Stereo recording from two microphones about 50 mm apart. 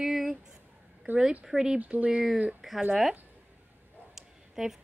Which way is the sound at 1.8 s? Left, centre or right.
Right.